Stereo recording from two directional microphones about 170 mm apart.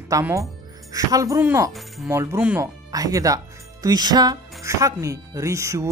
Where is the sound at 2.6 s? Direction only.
20° right (ahead or behind).